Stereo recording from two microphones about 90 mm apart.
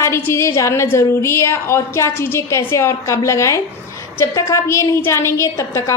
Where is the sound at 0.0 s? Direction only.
30° left (ahead or behind).